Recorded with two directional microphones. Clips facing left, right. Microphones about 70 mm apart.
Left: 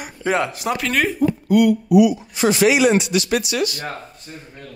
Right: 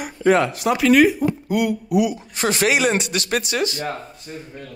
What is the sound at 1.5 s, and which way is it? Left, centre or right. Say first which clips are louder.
Speech: left 8 dB; right.